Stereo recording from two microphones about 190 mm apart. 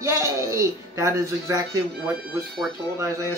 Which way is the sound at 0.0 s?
15° right (ahead or behind).